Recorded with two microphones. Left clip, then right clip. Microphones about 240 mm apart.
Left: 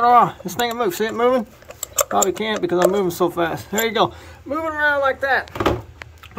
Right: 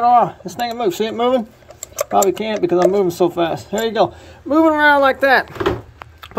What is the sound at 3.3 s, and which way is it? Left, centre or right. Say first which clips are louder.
Speech: right 2 dB; left.